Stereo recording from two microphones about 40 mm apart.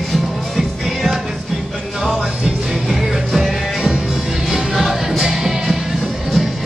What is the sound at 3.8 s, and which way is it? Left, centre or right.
Music, centre.